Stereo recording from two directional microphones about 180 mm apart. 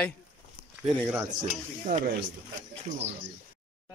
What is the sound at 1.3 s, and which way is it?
Stir, 45° right (ahead or behind).